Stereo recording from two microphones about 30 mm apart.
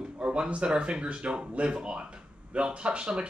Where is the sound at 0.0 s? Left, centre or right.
Right.